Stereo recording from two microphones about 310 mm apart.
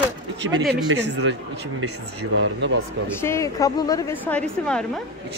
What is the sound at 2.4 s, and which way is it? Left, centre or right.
Speech, right.